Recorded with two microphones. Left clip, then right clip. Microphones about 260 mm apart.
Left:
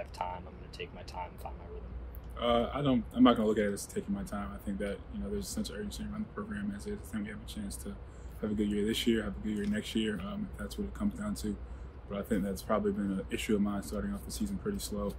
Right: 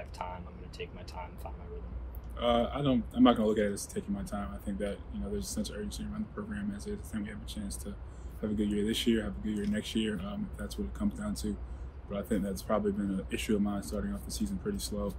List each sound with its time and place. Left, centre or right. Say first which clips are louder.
0.0 s speech: left 3 dB; left
2.3 s speech: right 1 dB; centre